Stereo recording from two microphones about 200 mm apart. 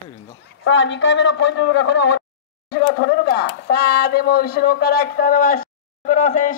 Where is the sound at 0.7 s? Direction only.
65° left (ahead or behind).